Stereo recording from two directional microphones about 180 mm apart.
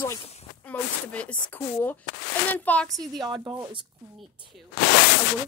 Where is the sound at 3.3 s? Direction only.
25° right (ahead or behind).